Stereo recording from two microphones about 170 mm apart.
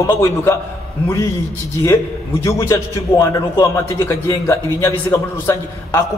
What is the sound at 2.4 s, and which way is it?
A man's voice, 15° left (ahead or behind).